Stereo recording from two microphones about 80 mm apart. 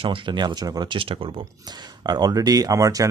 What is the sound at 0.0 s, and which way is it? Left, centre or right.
Speech, right.